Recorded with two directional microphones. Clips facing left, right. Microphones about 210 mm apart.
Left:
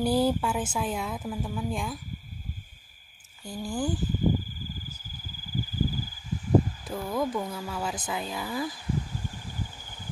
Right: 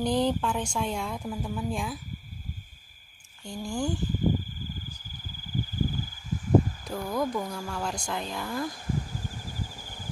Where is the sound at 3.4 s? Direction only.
5° left (ahead or behind).